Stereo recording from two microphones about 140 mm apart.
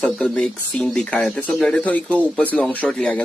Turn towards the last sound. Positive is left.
turn(degrees=5)  # may be behind; listen again after turning